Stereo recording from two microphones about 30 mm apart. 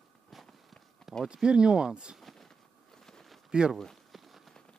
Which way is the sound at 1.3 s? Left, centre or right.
Right.